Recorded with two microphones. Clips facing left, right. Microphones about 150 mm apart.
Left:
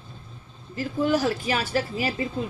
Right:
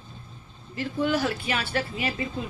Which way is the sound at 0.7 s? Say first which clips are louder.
Left 2 dB; 40° left (ahead or behind).